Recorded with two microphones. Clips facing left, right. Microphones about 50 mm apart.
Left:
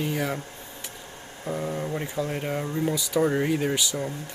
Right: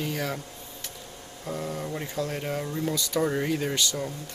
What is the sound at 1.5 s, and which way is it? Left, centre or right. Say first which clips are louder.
Speech: left 3 dB; centre.